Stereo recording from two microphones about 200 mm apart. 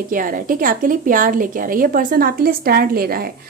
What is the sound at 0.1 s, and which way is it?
A woman's voice, 45° right (ahead or behind).